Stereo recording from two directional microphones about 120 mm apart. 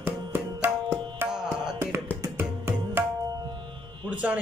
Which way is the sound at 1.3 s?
5° right (ahead or behind).